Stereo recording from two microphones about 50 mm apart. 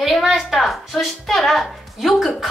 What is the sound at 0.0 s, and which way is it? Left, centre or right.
A woman's voice, centre.